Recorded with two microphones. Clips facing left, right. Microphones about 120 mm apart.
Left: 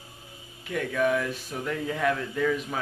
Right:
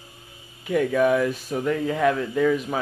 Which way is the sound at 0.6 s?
15° right (ahead or behind).